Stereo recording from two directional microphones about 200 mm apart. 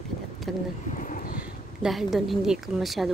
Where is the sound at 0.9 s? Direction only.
40° left (ahead or behind).